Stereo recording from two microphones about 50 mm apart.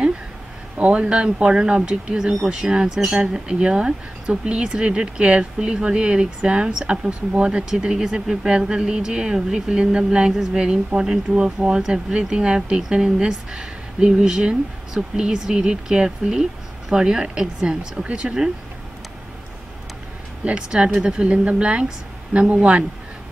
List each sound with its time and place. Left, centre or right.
0.7 s speech: right
20.4 s a woman's voice: centre